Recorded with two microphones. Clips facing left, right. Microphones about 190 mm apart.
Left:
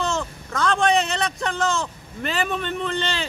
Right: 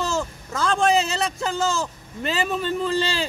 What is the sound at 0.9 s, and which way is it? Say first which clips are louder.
Speech: even; 25° right (ahead or behind).